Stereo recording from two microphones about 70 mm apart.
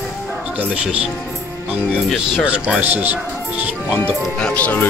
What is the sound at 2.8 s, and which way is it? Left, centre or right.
Speech, right.